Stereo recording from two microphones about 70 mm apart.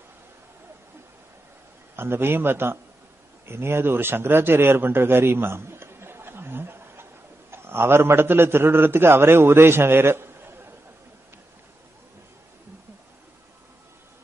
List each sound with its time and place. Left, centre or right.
2.0 s a man's voice: right